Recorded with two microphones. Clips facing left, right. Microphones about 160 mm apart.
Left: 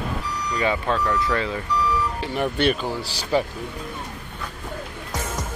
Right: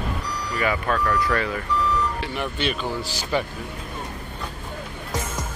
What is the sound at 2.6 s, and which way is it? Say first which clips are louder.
Speech: left 6 dB; 60° left (ahead or behind).